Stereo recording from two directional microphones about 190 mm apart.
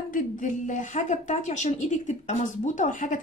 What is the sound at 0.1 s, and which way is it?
A woman's voice, 40° left (ahead or behind).